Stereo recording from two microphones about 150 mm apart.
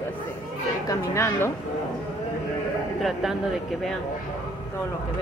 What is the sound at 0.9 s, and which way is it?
Speech, 15° left (ahead or behind).